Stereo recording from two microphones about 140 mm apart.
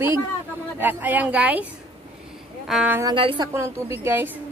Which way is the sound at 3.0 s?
35° right (ahead or behind).